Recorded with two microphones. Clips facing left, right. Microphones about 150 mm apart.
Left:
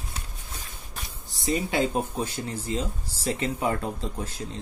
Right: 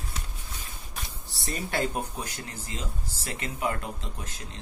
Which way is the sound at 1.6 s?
20° left (ahead or behind).